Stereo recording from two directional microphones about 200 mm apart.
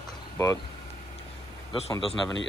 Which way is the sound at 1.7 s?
25° left (ahead or behind).